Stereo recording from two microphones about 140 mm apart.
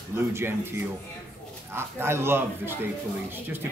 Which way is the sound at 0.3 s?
15° right (ahead or behind).